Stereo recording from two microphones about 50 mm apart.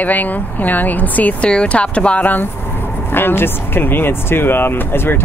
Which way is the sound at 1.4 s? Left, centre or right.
Left.